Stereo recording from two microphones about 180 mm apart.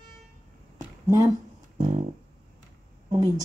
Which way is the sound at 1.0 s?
15° right (ahead or behind).